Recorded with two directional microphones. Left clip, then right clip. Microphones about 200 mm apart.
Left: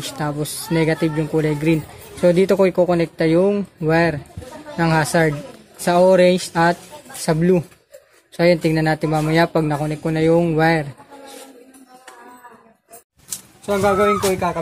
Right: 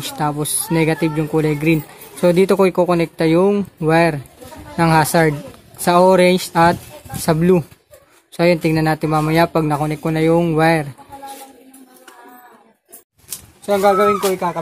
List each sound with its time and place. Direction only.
0.0 s speech: 15° right (ahead or behind)
13.7 s speech: 15° right (ahead or behind)
14.3 s music: 5° right (ahead or behind)